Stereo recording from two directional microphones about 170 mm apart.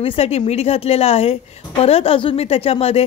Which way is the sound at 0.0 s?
35° left (ahead or behind).